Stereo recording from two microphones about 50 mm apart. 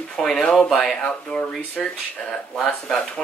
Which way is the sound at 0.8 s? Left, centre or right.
Left.